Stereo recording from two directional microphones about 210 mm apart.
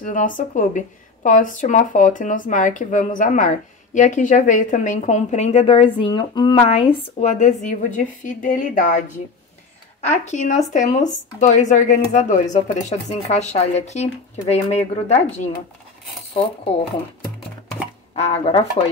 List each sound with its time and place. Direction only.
0.0 s speech: 40° left (ahead or behind)
10.0 s speech: 35° left (ahead or behind)
18.1 s speech: 30° left (ahead or behind)